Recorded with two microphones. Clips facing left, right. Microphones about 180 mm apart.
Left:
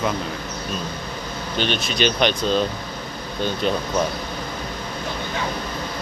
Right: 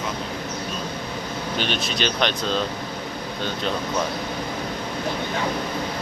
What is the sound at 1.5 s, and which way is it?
Speech, centre (ahead or behind).